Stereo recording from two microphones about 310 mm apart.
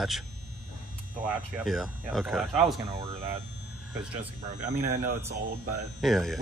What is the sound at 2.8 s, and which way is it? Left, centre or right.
Speech, centre.